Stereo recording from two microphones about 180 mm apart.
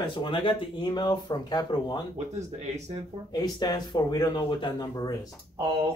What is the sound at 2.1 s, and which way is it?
Speech, 40° right (ahead or behind).